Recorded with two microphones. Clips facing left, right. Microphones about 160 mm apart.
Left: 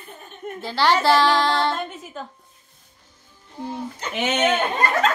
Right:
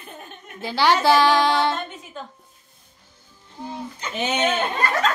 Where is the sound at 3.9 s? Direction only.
70° left (ahead or behind).